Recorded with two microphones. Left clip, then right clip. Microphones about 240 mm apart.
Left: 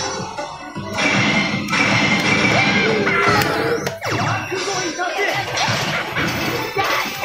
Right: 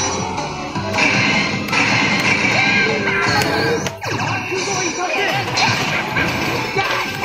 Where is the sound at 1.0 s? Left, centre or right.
Right.